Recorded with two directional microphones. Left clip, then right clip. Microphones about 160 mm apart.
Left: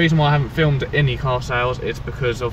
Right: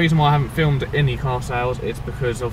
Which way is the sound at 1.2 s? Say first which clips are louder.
Left 3 dB; 30° left (ahead or behind).